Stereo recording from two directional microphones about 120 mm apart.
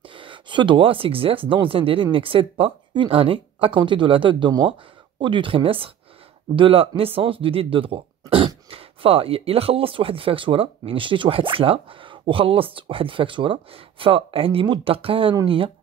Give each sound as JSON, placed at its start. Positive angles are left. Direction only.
{"t": 0.1, "sound": "speech", "side_deg": -45}